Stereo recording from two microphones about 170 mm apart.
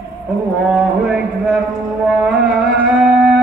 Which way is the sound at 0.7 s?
5° right (ahead or behind).